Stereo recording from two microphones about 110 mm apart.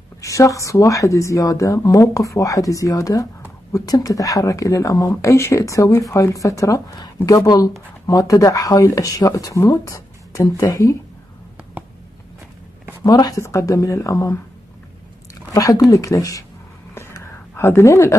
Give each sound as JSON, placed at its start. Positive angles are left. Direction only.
{"t": 0.2, "sound": "speech", "side_deg": 30}
{"t": 13.0, "sound": "speech", "side_deg": 35}
{"t": 15.5, "sound": "speech", "side_deg": 35}
{"t": 17.6, "sound": "speech", "side_deg": 25}